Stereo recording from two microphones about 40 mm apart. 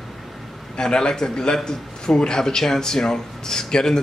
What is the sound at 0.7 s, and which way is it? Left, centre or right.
A man's voice, left.